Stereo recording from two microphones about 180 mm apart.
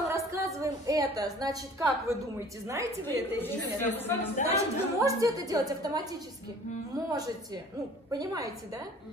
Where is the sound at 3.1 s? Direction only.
10° left (ahead or behind).